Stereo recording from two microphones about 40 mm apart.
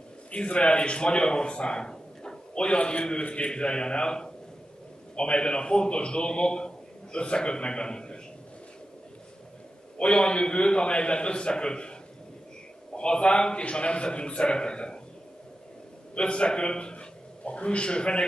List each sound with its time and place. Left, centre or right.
0.3 s a man's voice: left
9.9 s a man's voice: left
12.9 s a man's voice: left
16.2 s a man's voice: left